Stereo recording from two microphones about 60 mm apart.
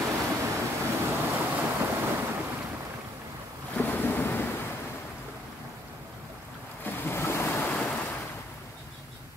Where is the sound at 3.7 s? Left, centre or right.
Left.